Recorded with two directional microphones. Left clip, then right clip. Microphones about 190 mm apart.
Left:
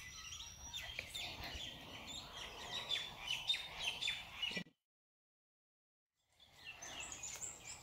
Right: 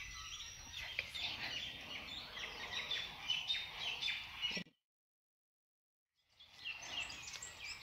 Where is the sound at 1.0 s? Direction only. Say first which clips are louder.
Right 4 dB; 5° left (ahead or behind).